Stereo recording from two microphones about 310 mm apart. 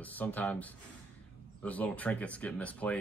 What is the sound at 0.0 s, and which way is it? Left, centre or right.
Speech, centre.